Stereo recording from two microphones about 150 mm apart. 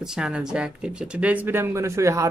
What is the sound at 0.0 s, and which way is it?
Speech, 5° right (ahead or behind).